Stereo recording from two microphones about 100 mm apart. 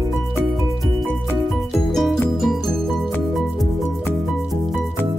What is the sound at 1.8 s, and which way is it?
Music, centre (ahead or behind).